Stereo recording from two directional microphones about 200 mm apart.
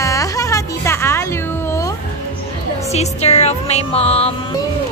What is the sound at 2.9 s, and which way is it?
Music, 30° left (ahead or behind).